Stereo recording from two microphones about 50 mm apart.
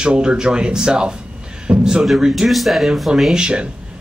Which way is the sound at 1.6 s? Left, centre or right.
Centre.